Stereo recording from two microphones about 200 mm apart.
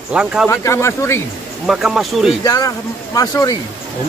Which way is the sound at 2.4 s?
15° left (ahead or behind).